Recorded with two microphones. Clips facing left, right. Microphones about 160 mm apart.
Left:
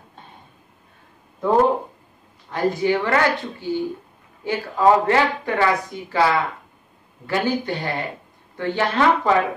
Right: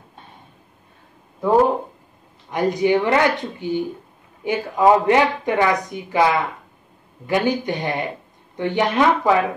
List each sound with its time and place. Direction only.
2.5 s speech: 15° right (ahead or behind)